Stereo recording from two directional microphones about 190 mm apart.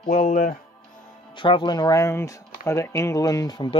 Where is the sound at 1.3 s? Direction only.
25° left (ahead or behind).